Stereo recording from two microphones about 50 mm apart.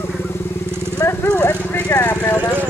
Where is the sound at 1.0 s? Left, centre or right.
Left.